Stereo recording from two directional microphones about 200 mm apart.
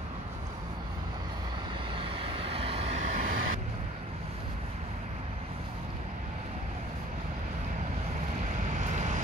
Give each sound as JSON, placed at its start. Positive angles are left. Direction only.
{"t": 2.0, "sound": "vehicle", "side_deg": -25}
{"t": 8.7, "sound": "vehicle", "side_deg": -40}